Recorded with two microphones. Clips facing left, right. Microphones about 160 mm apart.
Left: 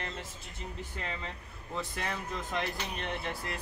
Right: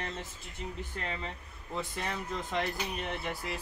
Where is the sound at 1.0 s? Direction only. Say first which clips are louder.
Even; centre (ahead or behind).